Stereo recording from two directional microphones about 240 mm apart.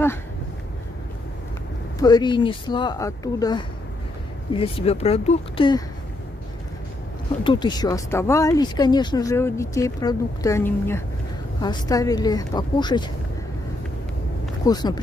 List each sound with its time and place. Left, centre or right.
2.0 s speech: centre
7.4 s speech: centre
14.6 s speech: centre